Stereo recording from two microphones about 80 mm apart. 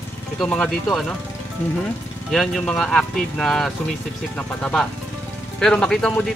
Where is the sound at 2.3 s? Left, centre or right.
Centre.